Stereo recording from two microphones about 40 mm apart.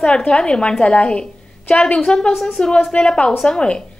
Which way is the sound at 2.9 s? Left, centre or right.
Left.